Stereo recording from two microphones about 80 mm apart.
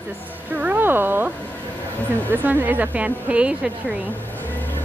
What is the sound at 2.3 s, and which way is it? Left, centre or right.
A woman's voice, right.